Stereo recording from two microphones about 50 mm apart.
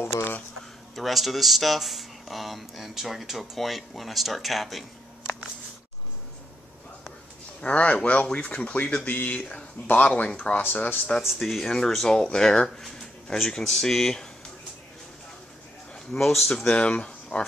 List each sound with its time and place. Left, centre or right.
0.9 s speech: centre
7.6 s speech: left
9.0 s speech: left
10.6 s speech: left
11.4 s speech: centre
16.2 s speech: centre
16.7 s speech: left